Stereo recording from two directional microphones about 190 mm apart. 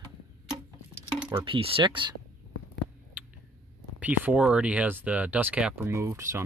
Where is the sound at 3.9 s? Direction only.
10° right (ahead or behind).